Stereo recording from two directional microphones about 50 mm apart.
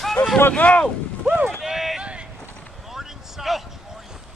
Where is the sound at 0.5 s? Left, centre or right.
Left.